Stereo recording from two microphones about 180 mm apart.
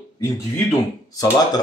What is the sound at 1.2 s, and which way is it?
Speech, 20° left (ahead or behind).